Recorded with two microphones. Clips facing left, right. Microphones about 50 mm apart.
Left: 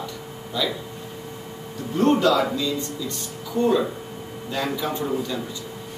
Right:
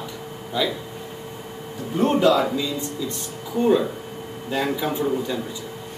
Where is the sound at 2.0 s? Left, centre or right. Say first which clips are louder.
Even; centre.